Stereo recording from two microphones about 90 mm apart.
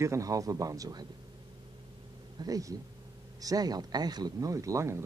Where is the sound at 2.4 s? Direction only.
40° right (ahead or behind).